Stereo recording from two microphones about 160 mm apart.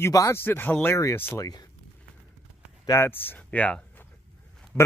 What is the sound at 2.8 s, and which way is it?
A man's voice, 15° left (ahead or behind).